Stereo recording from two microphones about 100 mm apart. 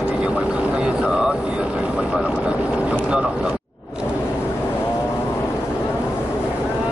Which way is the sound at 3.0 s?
10° right (ahead or behind).